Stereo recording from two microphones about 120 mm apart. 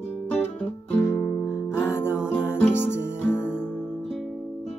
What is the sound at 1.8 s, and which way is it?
Music, 20° left (ahead or behind).